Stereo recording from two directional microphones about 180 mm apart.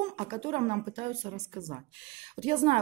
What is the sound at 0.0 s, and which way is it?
A woman's voice, 35° right (ahead or behind).